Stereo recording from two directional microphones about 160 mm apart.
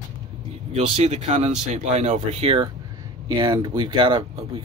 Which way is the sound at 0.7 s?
40° right (ahead or behind).